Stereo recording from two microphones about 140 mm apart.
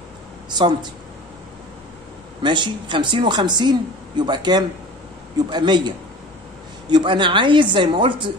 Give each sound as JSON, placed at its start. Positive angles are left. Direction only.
{"t": 0.5, "sound": "speech", "side_deg": -30}
{"t": 2.4, "sound": "a woman's voice", "side_deg": -35}